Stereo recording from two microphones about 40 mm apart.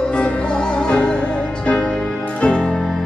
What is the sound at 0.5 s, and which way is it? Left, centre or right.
Music, left.